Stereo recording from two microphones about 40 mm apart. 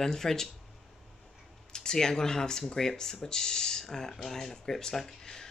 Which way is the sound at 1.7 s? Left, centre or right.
Centre.